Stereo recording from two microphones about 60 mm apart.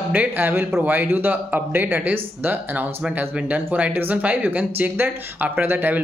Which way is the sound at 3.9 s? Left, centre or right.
Right.